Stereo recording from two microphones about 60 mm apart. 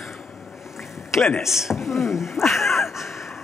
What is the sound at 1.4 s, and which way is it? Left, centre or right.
A woman's voice, centre.